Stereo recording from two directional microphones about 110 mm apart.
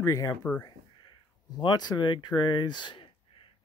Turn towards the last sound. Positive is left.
turn(degrees=50)  # may be behind; listen again after turning